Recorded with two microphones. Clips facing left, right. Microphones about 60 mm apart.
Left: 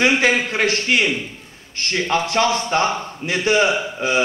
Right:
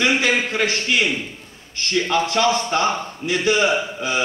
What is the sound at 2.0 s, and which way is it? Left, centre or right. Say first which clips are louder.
Speech: left 1 dB; left.